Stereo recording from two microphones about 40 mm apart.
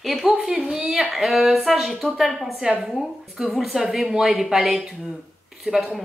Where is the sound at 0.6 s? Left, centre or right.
Centre.